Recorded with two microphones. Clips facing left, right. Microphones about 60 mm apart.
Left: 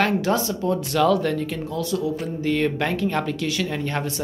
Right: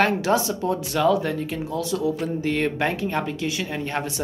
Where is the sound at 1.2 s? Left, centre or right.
Right.